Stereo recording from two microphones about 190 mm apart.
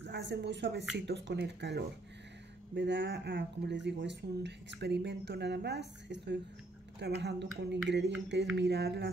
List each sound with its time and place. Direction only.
0.0 s speech: 65° right (ahead or behind)